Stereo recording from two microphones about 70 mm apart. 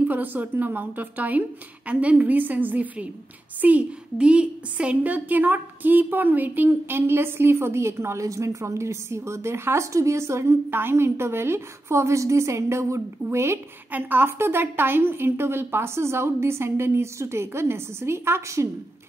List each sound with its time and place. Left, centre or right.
0.1 s a woman's voice: right
13.9 s a woman's voice: right